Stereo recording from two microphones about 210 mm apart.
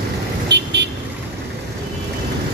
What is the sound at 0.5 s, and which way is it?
Vehicle, 55° right (ahead or behind).